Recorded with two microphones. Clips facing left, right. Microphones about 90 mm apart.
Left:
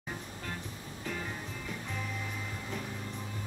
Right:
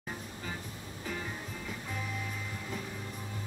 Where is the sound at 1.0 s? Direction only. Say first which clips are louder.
Even; centre (ahead or behind).